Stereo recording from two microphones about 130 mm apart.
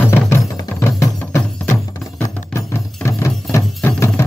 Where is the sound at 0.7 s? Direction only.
20° left (ahead or behind).